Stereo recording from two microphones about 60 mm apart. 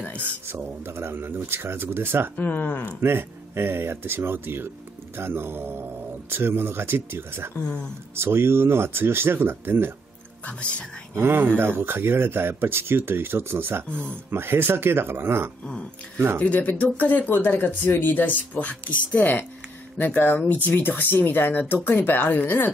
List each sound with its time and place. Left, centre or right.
0.2 s speech: right
2.3 s speech: left
3.0 s speech: right
7.6 s speech: centre
8.2 s speech: right
10.4 s speech: left
11.1 s speech: right
13.8 s speech: centre
14.3 s speech: right
15.6 s speech: centre